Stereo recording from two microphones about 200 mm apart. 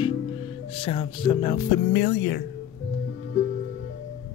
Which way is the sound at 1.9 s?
55° left (ahead or behind).